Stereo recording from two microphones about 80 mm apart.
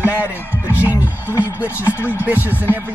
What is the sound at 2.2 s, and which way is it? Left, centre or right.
Speech, right.